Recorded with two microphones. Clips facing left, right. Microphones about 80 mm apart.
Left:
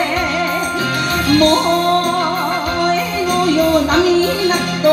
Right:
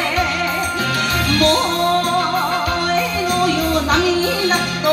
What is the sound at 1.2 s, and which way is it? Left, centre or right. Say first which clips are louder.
Music: left 5 dB; left.